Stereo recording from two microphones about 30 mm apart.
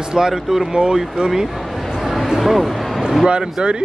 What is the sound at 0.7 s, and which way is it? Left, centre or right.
Speech, right.